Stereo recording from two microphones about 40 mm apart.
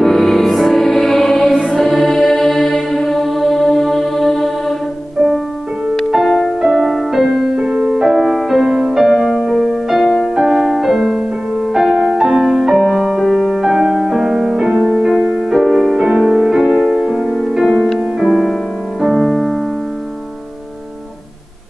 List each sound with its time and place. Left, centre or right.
0.0 s music: centre
6.1 s music: centre
6.6 s music: centre
7.2 s music: centre
8.0 s music: centre
8.6 s music: centre
9.0 s music: centre
16.6 s music: centre
17.0 s music: centre
18.3 s music: centre